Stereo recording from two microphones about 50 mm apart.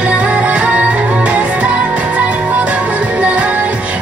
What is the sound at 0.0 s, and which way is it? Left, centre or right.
Music, right.